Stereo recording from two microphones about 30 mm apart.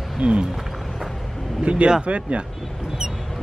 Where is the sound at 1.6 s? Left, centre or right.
Right.